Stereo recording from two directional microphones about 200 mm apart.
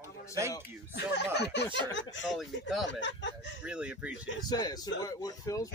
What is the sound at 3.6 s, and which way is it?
Speech, 5° right (ahead or behind).